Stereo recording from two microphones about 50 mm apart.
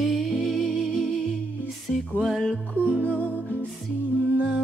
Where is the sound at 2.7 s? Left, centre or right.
Left.